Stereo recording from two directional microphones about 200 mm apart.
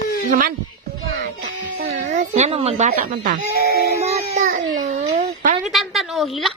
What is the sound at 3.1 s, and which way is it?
Speech, 40° right (ahead or behind).